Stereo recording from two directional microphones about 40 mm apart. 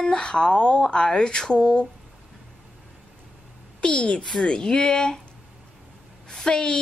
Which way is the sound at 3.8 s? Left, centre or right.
Left.